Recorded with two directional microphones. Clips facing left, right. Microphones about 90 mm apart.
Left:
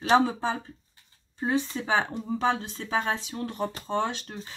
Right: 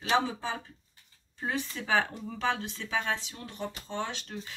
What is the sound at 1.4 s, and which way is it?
Speech, 30° left (ahead or behind).